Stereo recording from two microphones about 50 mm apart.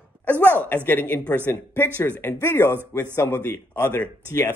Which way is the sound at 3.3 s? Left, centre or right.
Left.